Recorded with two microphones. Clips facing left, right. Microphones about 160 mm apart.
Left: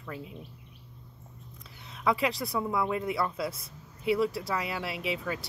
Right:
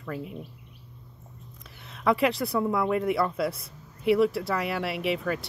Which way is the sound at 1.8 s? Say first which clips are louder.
Right 4 dB; centre (ahead or behind).